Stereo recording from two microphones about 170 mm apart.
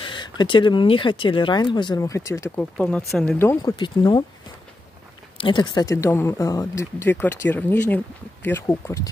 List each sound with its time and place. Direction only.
0.0 s speech: 25° left (ahead or behind)
3.7 s speech: 25° left (ahead or behind)
5.4 s speech: 30° left (ahead or behind)